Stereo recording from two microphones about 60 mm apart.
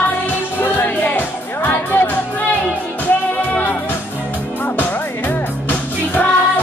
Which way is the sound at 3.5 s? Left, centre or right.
Left.